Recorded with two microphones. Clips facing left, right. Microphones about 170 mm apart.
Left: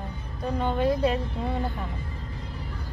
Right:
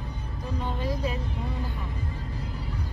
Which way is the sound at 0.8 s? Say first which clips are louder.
Left 8 dB; 65° left (ahead or behind).